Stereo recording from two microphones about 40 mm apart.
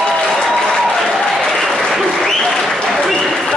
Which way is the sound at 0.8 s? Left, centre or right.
Centre.